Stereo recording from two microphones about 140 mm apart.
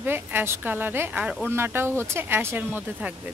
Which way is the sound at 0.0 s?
15° right (ahead or behind).